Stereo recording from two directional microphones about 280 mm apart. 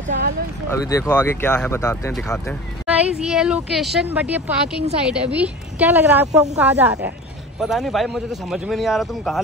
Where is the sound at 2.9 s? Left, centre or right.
Centre.